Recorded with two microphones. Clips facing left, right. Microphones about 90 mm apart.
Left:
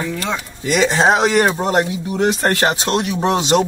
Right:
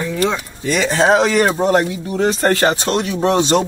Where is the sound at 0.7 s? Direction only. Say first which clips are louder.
Even; 25° left (ahead or behind).